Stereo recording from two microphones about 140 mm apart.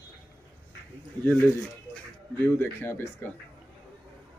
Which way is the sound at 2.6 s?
15° left (ahead or behind).